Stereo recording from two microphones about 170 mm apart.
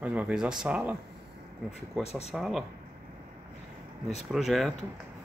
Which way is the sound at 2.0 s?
40° left (ahead or behind).